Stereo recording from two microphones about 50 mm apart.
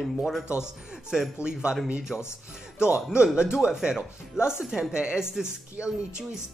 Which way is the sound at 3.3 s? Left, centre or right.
Centre.